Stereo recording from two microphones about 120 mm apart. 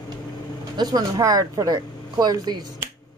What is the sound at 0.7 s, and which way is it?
Speech, 30° right (ahead or behind).